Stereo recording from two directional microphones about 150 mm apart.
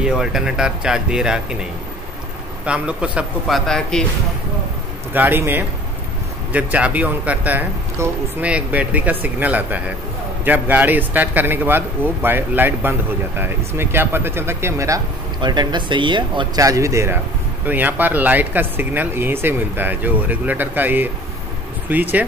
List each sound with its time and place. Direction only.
0.0 s speech: 5° right (ahead or behind)
5.1 s speech: 15° right (ahead or behind)
15.4 s speech: 30° right (ahead or behind); by 22.2 s 10° right (ahead or behind)